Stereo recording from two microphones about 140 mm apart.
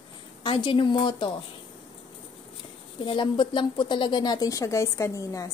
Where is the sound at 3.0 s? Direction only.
35° left (ahead or behind).